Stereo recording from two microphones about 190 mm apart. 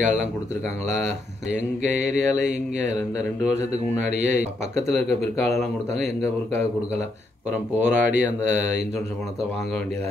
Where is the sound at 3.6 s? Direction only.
35° right (ahead or behind).